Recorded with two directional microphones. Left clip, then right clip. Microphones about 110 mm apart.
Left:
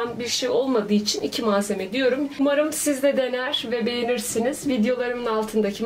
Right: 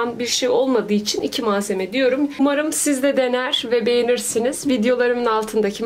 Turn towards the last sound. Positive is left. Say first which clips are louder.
# right 4 dB
turn(degrees=-40)  # may be behind; listen again after turning